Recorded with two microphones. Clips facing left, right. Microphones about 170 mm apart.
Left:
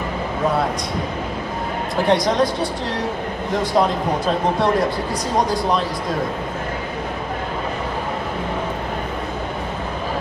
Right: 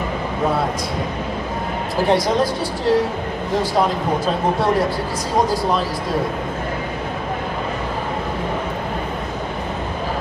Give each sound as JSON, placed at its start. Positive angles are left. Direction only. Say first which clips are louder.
{"t": 2.0, "sound": "speech", "louder": "even", "side_deg": 0}